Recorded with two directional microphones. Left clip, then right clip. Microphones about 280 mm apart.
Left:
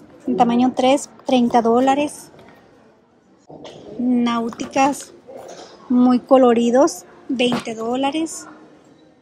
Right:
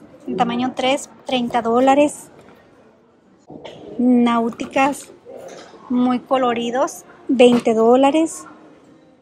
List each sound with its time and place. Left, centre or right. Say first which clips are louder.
0.4 s a woman's voice: left 3 dB; centre
4.1 s a woman's voice: right 3 dB; centre
7.3 s a woman's voice: right 8 dB; centre